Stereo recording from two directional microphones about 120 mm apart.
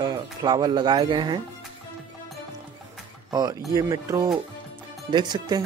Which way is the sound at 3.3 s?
30° right (ahead or behind).